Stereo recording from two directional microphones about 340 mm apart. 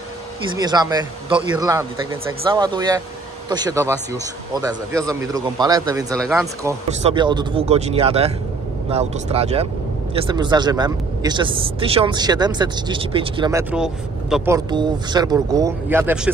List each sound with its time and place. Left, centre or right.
0.6 s speech: centre